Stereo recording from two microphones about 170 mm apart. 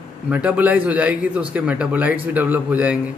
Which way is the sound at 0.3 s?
10° right (ahead or behind).